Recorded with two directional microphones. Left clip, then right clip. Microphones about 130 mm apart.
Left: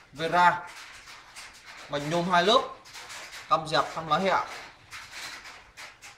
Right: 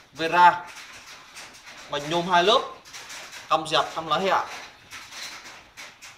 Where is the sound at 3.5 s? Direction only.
35° right (ahead or behind).